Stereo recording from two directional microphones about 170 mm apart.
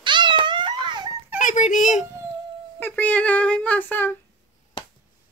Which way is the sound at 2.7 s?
10° left (ahead or behind).